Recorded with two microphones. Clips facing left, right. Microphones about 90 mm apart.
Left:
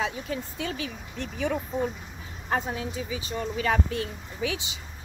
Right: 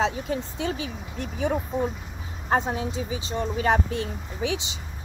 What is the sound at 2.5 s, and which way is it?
Speech, 30° right (ahead or behind).